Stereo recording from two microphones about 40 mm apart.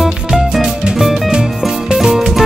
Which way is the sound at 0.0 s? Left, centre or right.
Centre.